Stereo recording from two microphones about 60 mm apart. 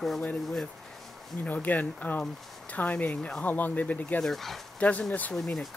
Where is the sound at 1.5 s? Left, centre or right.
Left.